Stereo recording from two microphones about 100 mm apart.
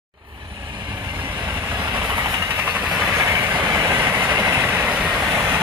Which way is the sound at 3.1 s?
30° right (ahead or behind).